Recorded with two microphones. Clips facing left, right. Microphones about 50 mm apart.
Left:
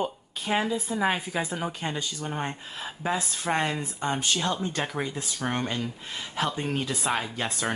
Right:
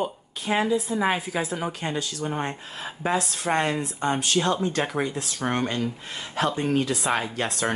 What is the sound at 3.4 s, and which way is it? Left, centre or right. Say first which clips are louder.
Speech: right 3 dB; centre.